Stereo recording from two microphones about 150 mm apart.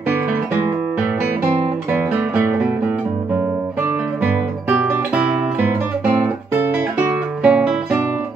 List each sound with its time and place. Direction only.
1.4 s music: 10° right (ahead or behind)
4.2 s music: 10° right (ahead or behind)